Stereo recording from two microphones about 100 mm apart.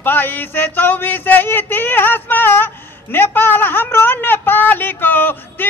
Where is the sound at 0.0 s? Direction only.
20° left (ahead or behind).